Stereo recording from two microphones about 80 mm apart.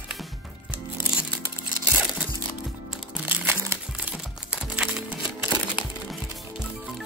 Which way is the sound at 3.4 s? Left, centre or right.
Right.